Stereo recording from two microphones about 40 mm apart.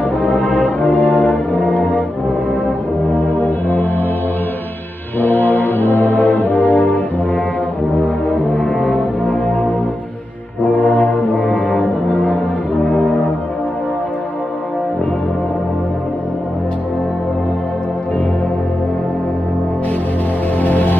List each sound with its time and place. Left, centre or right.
0.2 s brass instrument: left
3.3 s music: left
5.2 s brass instrument: left
10.6 s brass instrument: left
20.6 s music: left